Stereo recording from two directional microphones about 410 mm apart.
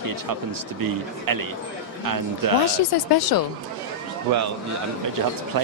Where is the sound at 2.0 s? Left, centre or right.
Right.